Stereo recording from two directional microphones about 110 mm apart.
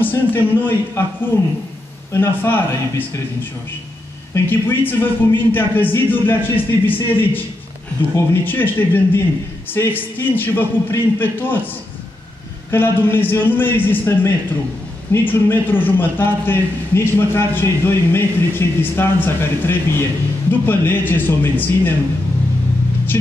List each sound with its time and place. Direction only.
0.0 s a man's voice: 20° left (ahead or behind)
2.1 s a man's voice: 20° left (ahead or behind)
4.3 s a man's voice: 20° left (ahead or behind)
12.7 s a man's voice: 20° left (ahead or behind)